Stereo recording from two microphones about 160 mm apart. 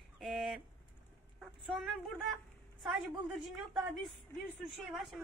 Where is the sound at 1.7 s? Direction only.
Centre (ahead or behind).